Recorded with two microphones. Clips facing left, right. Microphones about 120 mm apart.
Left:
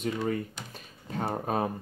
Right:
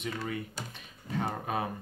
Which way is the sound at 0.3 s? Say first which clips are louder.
Left 5 dB; 40° left (ahead or behind).